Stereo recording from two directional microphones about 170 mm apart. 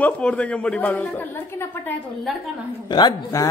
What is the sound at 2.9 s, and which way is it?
Speech, 20° left (ahead or behind).